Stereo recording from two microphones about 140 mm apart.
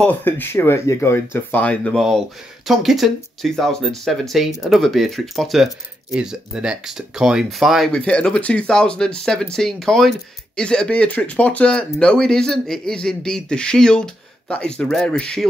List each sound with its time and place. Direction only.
0.0 s speech: 15° left (ahead or behind)